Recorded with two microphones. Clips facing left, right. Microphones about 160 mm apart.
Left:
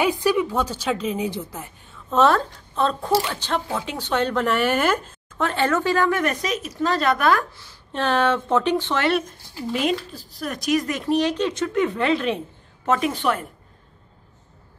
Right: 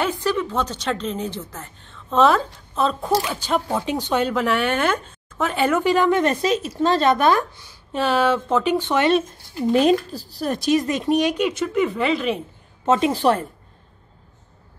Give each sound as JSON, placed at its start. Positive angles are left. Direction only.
{"t": 0.0, "sound": "a woman's voice", "side_deg": 15}
{"t": 5.5, "sound": "a woman's voice", "side_deg": -10}
{"t": 7.9, "sound": "a woman's voice", "side_deg": -5}
{"t": 8.7, "sound": "a woman's voice", "side_deg": -15}
{"t": 9.8, "sound": "a woman's voice", "side_deg": -35}
{"t": 12.8, "sound": "a woman's voice", "side_deg": -25}